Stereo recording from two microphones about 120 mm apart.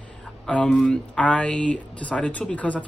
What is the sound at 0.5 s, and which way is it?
Speech, 5° left (ahead or behind).